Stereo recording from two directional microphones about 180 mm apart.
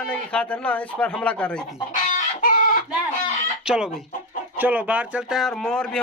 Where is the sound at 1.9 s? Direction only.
45° left (ahead or behind).